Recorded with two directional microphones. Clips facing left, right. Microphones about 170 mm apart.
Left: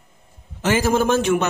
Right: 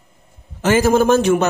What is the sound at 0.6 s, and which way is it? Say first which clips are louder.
Speech: right 4 dB; 45° right (ahead or behind).